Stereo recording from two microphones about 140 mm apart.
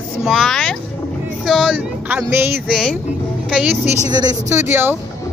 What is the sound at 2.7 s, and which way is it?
Speech, 5° left (ahead or behind).